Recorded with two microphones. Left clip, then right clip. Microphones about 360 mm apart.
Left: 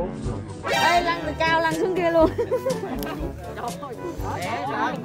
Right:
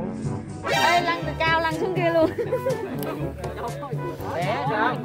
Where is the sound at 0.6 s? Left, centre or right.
Centre.